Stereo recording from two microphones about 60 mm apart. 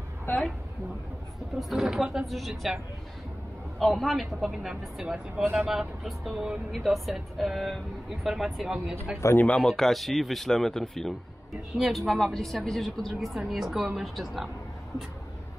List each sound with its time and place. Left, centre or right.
1.6 s speech: centre
3.8 s speech: centre
9.2 s speech: left
9.6 s speech: centre